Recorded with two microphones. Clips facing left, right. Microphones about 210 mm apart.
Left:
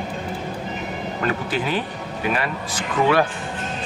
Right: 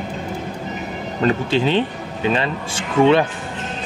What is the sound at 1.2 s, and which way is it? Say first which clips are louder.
Speech: right 7 dB; 25° right (ahead or behind).